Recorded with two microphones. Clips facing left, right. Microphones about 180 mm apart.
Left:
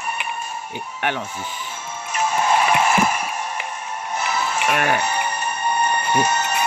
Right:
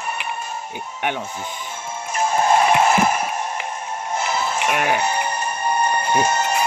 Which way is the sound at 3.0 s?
50° right (ahead or behind).